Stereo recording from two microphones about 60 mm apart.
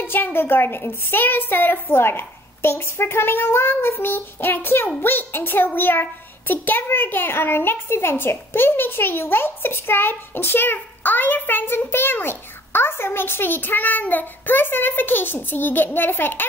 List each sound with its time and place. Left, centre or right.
0.0 s a child's voice: left